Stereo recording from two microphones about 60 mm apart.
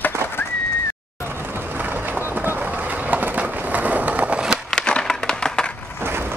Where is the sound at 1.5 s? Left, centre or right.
Right.